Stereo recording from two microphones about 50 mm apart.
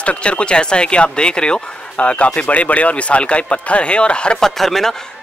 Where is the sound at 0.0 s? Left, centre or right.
Left.